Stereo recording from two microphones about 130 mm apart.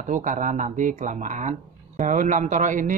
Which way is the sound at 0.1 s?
80° right.